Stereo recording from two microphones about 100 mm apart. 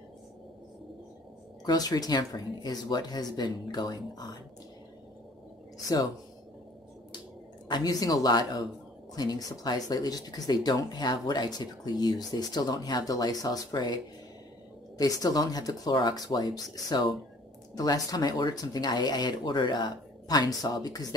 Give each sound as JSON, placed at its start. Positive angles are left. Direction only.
{"t": 1.7, "sound": "speech", "side_deg": 40}
{"t": 7.6, "sound": "speech", "side_deg": 45}
{"t": 15.0, "sound": "speech", "side_deg": 40}